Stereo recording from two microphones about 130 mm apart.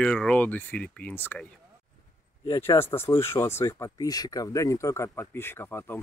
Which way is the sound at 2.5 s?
20° left (ahead or behind).